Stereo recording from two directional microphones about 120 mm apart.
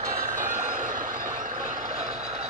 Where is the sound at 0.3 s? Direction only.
90° right.